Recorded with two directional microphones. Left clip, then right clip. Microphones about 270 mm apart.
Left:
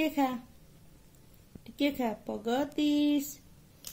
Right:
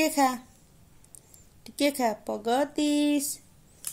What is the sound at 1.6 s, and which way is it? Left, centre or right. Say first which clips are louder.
Speech: right 6 dB; right.